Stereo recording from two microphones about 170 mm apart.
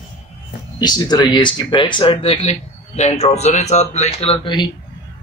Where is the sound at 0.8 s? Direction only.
25° left (ahead or behind).